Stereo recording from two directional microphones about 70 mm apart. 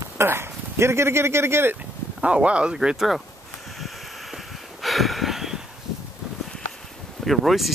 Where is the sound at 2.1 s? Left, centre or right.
Centre.